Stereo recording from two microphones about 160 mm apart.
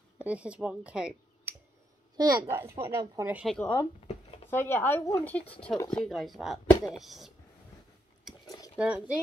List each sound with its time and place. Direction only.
0.2 s speech: 10° right (ahead or behind)
2.1 s a child's voice: 20° right (ahead or behind)
3.3 s speech: 5° left (ahead or behind)
4.1 s a sound: 40° left (ahead or behind)
4.5 s speech: 15° left (ahead or behind)
5.8 s speech: 25° left (ahead or behind)
6.0 s speech: centre (ahead or behind)
8.5 s a sound: 20° left (ahead or behind)
8.7 s a child's voice: 5° right (ahead or behind)